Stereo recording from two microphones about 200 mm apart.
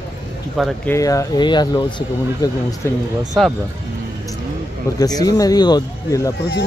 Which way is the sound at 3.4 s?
Centre (ahead or behind).